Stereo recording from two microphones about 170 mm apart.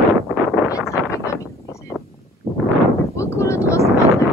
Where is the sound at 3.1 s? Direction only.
15° left (ahead or behind).